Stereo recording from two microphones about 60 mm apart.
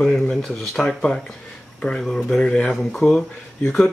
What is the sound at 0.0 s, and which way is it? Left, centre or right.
Speech, centre.